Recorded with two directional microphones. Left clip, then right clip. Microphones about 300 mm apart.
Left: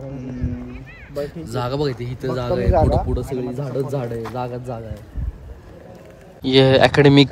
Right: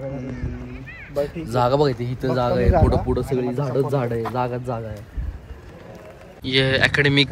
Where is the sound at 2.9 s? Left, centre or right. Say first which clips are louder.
Even; right.